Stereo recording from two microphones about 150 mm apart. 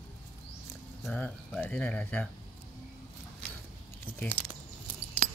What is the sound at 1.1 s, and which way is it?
Speech, 10° left (ahead or behind).